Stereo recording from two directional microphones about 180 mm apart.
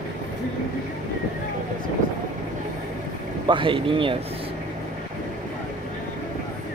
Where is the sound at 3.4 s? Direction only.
30° right (ahead or behind).